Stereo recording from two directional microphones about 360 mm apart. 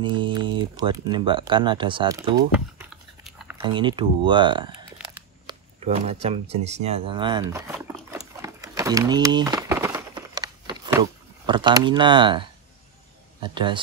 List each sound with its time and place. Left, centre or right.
0.0 s speech: centre
3.6 s a sound: centre
13.4 s a man's voice: centre